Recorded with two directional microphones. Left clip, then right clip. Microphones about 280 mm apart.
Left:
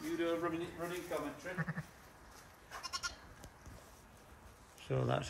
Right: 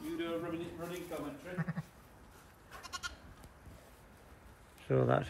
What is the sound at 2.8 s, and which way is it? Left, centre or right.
Goat, centre.